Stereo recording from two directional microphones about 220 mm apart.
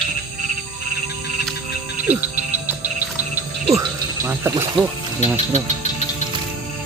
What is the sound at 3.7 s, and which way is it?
Music, 10° right (ahead or behind).